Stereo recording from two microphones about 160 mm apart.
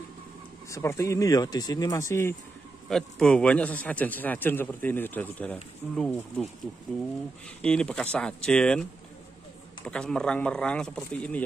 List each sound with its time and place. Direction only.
0.7 s speech: 20° left (ahead or behind)
2.9 s a man's voice: 5° left (ahead or behind)
7.6 s speech: 5° left (ahead or behind)
9.8 s speech: 5° left (ahead or behind)